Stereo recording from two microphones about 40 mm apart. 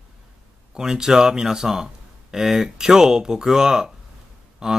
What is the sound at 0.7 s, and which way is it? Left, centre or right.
Speech, centre.